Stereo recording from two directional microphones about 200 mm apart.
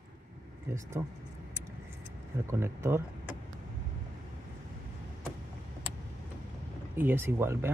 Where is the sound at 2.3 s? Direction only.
15° right (ahead or behind).